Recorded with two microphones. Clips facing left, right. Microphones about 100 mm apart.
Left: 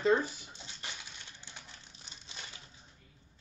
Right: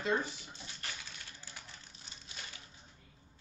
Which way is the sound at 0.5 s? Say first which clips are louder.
Even; 20° left (ahead or behind).